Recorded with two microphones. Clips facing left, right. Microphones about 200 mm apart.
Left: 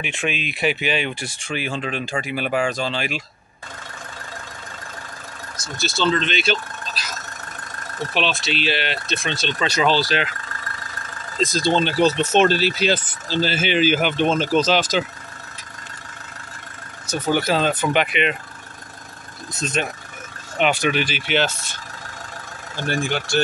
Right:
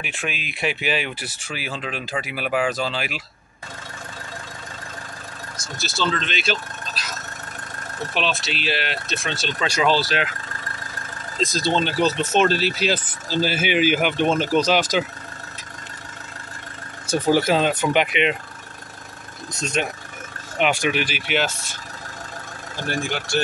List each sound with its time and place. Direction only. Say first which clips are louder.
0.0 s speech: left 5 dB; centre (ahead or behind)
5.8 s speech: left 4 dB; 5° right (ahead or behind)
8.1 s speech: left 2 dB; centre (ahead or behind)
11.4 s speech: left 2 dB; centre (ahead or behind)
17.1 s speech: right 2 dB; 25° right (ahead or behind)
19.8 s speech: right 1 dB; 15° right (ahead or behind)